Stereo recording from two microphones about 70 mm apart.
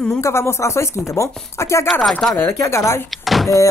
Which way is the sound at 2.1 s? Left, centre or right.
Centre.